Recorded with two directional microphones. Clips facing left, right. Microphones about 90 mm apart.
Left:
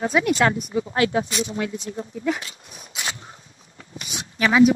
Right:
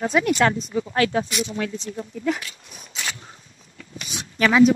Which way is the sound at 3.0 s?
30° left (ahead or behind).